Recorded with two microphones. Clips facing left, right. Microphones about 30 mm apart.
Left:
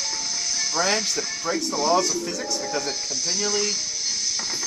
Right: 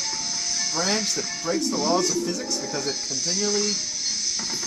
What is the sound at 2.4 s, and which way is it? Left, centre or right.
Speech, centre.